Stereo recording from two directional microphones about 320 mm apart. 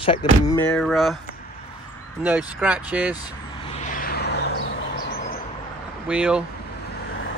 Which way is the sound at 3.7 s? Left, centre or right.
Left.